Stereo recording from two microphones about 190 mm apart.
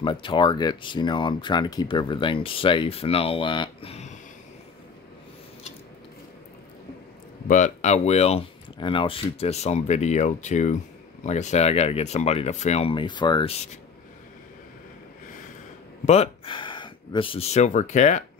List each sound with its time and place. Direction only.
0.0 s speech: 25° left (ahead or behind)
7.4 s speech: 40° left (ahead or behind)
16.1 s speech: 30° left (ahead or behind)